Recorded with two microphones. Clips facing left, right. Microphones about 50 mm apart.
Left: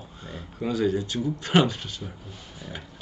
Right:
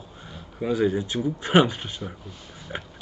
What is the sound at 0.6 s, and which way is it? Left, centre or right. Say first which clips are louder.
Speech: right 2 dB; centre.